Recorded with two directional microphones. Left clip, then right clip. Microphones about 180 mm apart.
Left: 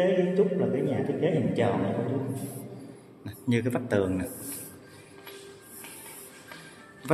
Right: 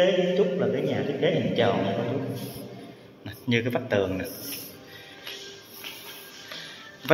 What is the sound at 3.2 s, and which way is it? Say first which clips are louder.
A man's voice: right 3 dB; 20° left (ahead or behind).